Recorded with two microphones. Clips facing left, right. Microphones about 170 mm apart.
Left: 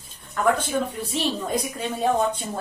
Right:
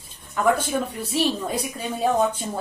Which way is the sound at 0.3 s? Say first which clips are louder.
Right 1 dB; 5° right (ahead or behind).